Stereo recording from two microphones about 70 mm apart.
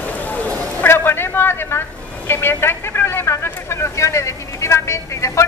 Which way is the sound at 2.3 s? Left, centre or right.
Left.